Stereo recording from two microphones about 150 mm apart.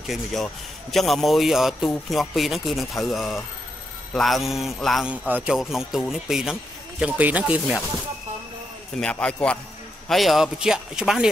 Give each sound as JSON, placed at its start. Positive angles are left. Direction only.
{"t": 0.0, "sound": "speech", "side_deg": 0}
{"t": 9.0, "sound": "a man's voice", "side_deg": 5}